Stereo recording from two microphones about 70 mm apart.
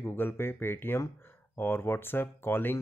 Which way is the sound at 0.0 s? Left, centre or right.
Left.